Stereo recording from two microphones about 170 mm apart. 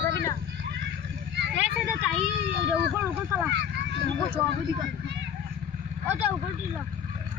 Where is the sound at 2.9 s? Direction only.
15° right (ahead or behind).